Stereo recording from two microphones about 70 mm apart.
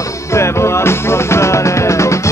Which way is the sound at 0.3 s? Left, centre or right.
Left.